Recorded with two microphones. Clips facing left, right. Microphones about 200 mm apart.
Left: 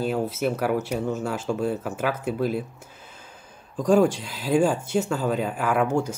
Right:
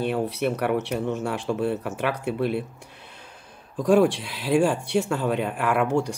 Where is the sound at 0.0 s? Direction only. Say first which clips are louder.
Even; centre (ahead or behind).